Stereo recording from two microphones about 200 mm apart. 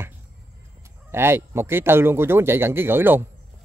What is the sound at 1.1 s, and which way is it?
Speech, 10° right (ahead or behind).